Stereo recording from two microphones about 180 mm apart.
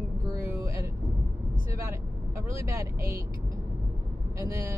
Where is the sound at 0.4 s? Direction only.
15° right (ahead or behind).